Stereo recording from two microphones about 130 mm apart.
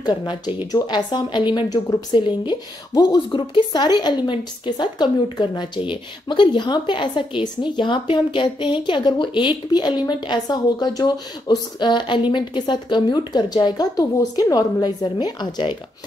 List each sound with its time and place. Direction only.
0.0 s a woman's voice: 35° left (ahead or behind)